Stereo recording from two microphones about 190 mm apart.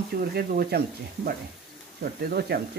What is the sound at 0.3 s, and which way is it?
Speech, 55° right (ahead or behind).